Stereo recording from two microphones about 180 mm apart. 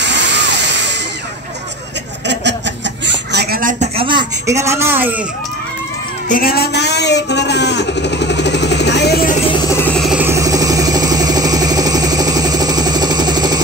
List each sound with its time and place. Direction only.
0.0 s music: 75° right (ahead or behind)
2.2 s chuckle: 75° right (ahead or behind); by 3.7 s 55° right (ahead or behind)
3.8 s speech: 30° right (ahead or behind); by 5.2 s 10° right (ahead or behind)
6.2 s a man's voice: 50° left (ahead or behind); by 9.2 s 70° left (ahead or behind)
9.5 s vehicle: 15° left (ahead or behind)
10.0 s vehicle: 10° right (ahead or behind)